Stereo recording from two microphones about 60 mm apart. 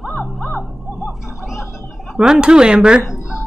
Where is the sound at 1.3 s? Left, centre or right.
Centre.